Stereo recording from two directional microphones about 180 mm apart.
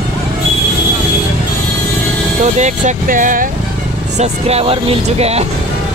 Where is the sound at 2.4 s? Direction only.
40° right (ahead or behind).